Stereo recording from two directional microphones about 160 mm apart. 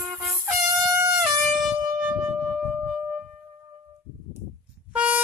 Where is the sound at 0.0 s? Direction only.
Centre (ahead or behind).